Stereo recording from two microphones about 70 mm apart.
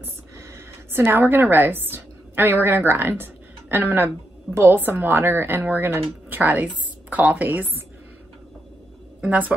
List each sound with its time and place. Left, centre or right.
0.4 s a woman's voice: right
9.2 s speech: right